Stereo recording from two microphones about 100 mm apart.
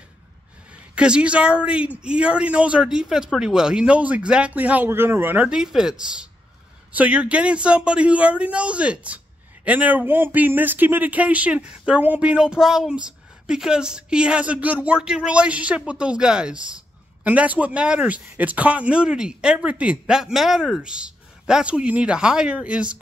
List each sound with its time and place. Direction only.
0.9 s speech: 10° right (ahead or behind)
5.5 s speech: 5° right (ahead or behind)